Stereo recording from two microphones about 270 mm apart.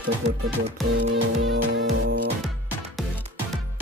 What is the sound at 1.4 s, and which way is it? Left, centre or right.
Music, right.